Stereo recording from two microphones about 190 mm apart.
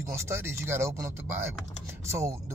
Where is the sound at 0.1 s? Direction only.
15° right (ahead or behind).